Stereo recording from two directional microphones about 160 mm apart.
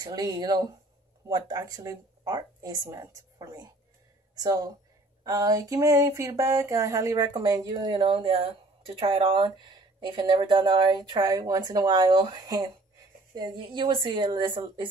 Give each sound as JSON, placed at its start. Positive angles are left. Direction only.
{"t": 0.0, "sound": "speech", "side_deg": -25}